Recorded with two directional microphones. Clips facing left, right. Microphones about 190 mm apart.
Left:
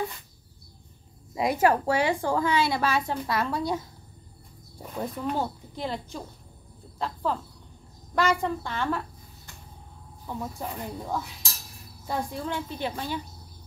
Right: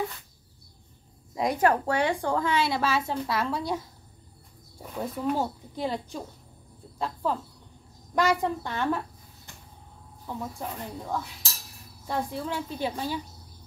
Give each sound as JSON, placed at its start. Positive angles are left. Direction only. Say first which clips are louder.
{"t": 1.3, "sound": "a woman's voice", "louder": "left 1 dB", "side_deg": 5}
{"t": 4.9, "sound": "a woman's voice", "louder": "right 1 dB", "side_deg": -5}
{"t": 8.1, "sound": "a woman's voice", "louder": "even", "side_deg": -15}
{"t": 10.2, "sound": "a woman's voice", "louder": "left 1 dB", "side_deg": 0}